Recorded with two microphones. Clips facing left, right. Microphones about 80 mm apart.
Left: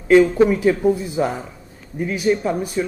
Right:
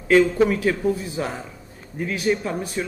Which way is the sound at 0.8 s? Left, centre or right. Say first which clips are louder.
Left 5 dB; left.